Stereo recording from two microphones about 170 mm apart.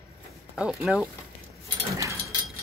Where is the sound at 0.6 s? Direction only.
Centre (ahead or behind).